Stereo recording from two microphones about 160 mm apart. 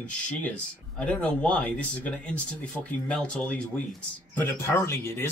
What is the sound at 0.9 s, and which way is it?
Speech, 10° left (ahead or behind).